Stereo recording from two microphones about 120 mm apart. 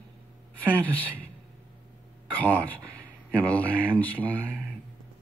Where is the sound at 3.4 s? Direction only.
15° left (ahead or behind).